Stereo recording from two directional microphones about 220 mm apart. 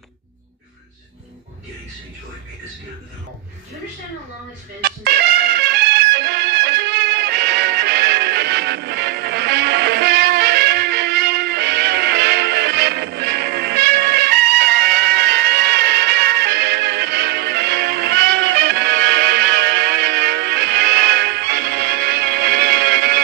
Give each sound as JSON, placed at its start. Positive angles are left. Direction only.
{"t": 4.8, "sound": "music", "side_deg": -45}